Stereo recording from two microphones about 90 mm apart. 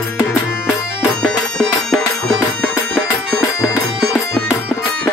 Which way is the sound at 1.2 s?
5° left (ahead or behind).